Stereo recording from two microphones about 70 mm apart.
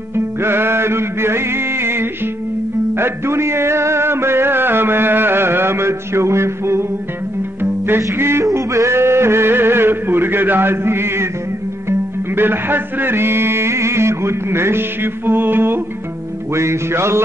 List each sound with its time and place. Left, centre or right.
0.1 s music: right
8.5 s a sound: right
12.4 s music: right